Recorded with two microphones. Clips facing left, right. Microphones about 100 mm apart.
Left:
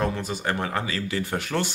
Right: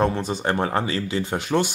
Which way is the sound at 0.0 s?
30° right (ahead or behind).